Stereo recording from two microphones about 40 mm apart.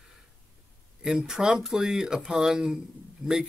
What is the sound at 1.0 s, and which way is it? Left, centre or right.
Speech, centre.